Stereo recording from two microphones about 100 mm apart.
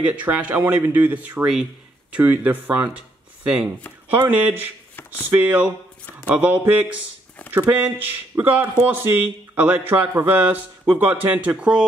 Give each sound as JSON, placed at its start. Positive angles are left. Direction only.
{"t": 0.1, "sound": "speech", "side_deg": -15}